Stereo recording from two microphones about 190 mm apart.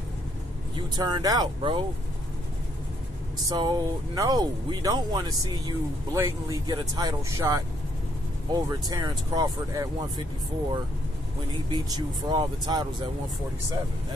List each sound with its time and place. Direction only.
0.7 s speech: 25° right (ahead or behind)
3.4 s speech: 20° right (ahead or behind)
8.6 s speech: 20° right (ahead or behind)
11.7 s speech: 20° right (ahead or behind)